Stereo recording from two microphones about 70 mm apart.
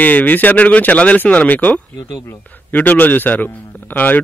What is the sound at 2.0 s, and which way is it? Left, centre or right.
Speech, left.